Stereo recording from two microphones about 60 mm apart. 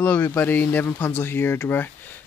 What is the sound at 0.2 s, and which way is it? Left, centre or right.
Speech, left.